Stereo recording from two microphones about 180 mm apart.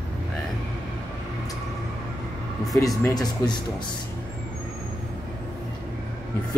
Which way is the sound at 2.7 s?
Centre (ahead or behind).